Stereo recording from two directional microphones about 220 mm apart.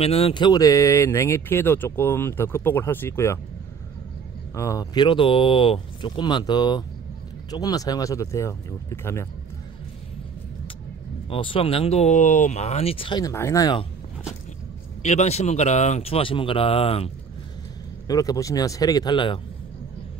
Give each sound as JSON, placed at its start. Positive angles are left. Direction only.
{"t": 0.0, "sound": "speech", "side_deg": 25}
{"t": 4.6, "sound": "speech", "side_deg": 15}
{"t": 11.2, "sound": "speech", "side_deg": 25}
{"t": 15.0, "sound": "speech", "side_deg": 30}
{"t": 18.0, "sound": "speech", "side_deg": 15}